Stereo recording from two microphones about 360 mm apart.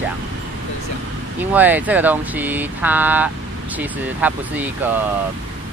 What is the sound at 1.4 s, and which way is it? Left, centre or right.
Speech, centre.